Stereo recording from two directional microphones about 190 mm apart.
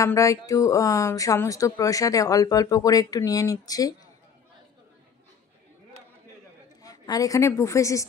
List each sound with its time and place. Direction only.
0.0 s speech: 15° left (ahead or behind)
6.8 s a woman's voice: 20° left (ahead or behind)